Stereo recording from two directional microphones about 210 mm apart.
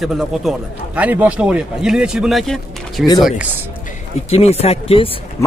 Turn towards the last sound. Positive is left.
turn(degrees=25)  # may be behind; listen again after turning